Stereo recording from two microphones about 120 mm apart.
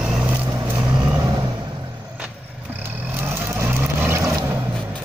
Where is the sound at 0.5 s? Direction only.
20° right (ahead or behind).